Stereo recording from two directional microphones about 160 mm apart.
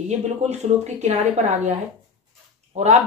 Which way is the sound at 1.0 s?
45° right (ahead or behind).